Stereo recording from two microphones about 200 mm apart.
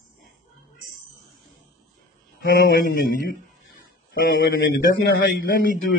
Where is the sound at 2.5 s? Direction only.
45° left (ahead or behind).